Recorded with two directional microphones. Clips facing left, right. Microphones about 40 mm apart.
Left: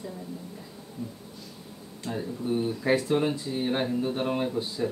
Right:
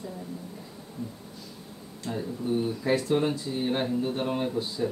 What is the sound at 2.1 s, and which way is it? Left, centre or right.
Speech, centre.